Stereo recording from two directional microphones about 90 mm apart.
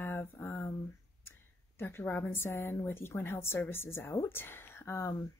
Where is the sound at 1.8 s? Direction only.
25° left (ahead or behind).